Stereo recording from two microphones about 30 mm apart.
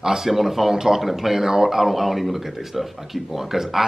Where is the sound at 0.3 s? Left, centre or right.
Centre.